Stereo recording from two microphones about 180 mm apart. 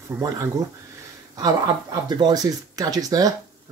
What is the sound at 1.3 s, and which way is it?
Speech, 20° right (ahead or behind).